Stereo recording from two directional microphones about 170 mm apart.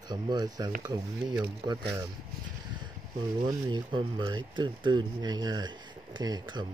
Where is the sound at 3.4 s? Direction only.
30° right (ahead or behind).